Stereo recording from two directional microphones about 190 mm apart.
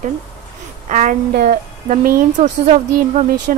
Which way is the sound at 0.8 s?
40° right (ahead or behind).